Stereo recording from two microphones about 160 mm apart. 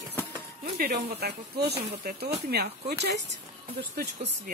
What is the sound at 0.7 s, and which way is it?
Speech, 80° right.